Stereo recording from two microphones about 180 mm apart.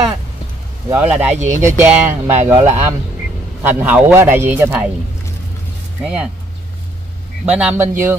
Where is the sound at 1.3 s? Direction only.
40° right (ahead or behind).